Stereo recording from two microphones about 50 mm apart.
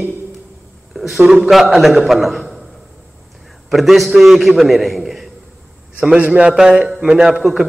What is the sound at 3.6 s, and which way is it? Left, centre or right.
A man's voice, centre.